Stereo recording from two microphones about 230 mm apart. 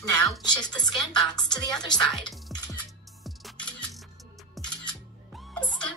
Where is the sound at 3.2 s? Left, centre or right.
Centre.